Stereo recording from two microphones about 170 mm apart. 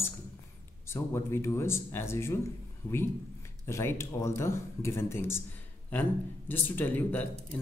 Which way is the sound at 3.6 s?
15° left (ahead or behind).